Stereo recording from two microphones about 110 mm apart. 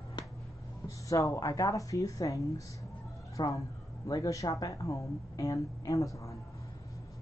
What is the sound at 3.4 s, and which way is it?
Speech, 40° left (ahead or behind).